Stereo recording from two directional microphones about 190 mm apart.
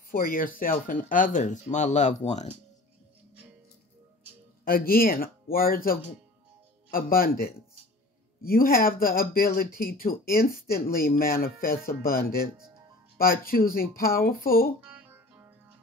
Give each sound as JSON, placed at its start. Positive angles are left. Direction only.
{"t": 0.1, "sound": "speech", "side_deg": 45}
{"t": 4.6, "sound": "speech", "side_deg": 50}
{"t": 14.8, "sound": "music", "side_deg": -5}